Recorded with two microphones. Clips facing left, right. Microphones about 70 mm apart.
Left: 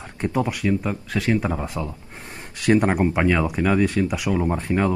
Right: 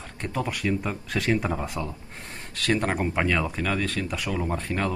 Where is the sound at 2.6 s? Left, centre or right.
Centre.